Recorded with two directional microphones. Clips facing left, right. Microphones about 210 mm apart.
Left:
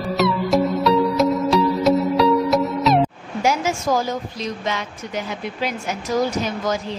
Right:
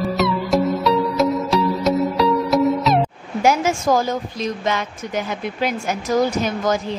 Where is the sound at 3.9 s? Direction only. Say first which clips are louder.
Right 3 dB; 50° right (ahead or behind).